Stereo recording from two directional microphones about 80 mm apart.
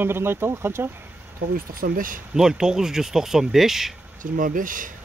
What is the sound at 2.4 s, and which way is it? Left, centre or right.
Speech, centre.